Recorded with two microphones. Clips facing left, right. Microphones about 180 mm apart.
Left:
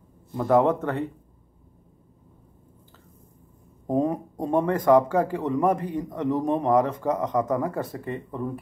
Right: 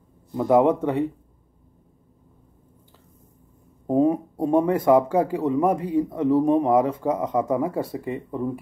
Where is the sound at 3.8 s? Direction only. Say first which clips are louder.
Right 4 dB; 5° right (ahead or behind).